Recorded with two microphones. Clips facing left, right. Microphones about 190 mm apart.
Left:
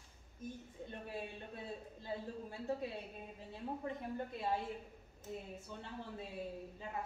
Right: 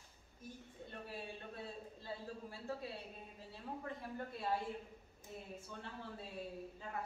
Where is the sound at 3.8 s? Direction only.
20° left (ahead or behind).